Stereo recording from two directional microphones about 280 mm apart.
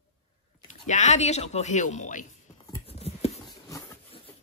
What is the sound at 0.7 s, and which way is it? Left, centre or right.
A woman's voice, left.